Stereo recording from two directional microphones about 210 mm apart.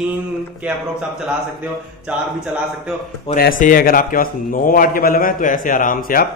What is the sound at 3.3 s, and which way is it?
Speech, 30° left (ahead or behind).